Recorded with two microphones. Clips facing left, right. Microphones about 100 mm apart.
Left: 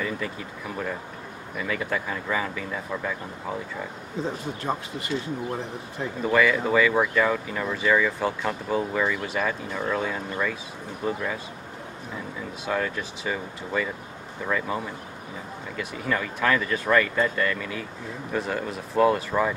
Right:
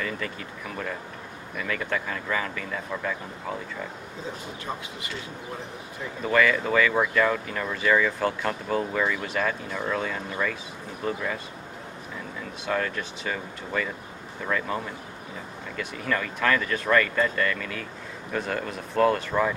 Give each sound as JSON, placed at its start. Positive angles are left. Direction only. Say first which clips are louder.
{"t": 0.0, "sound": "speech", "louder": "left 2 dB", "side_deg": 10}
{"t": 4.7, "sound": "speech", "louder": "left 5 dB", "side_deg": 40}
{"t": 6.2, "sound": "speech", "louder": "left 1 dB", "side_deg": 5}
{"t": 12.6, "sound": "speech", "louder": "even", "side_deg": 5}